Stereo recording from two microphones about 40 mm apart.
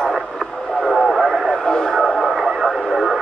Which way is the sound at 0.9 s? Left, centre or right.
Centre.